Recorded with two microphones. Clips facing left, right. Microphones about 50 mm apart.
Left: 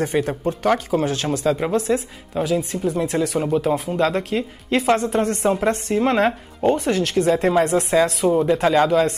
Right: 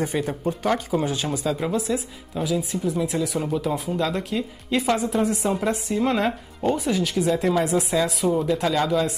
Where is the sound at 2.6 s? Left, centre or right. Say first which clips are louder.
Left 3 dB; centre.